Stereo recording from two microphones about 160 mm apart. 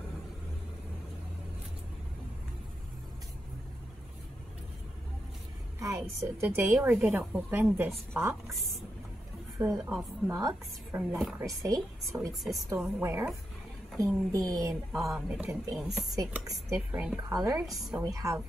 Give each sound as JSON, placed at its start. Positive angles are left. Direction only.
{"t": 5.8, "sound": "a woman's voice", "side_deg": -20}
{"t": 8.5, "sound": "speech", "side_deg": 0}
{"t": 9.6, "sound": "a woman's voice", "side_deg": -15}
{"t": 14.9, "sound": "speech", "side_deg": 0}
{"t": 16.2, "sound": "a woman's voice", "side_deg": -20}
{"t": 17.3, "sound": "a woman's voice", "side_deg": -20}
{"t": 17.6, "sound": "speech", "side_deg": 0}
{"t": 17.9, "sound": "a woman's voice", "side_deg": -20}